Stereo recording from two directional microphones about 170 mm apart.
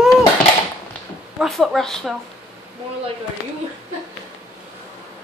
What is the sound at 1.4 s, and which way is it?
Speech, centre (ahead or behind).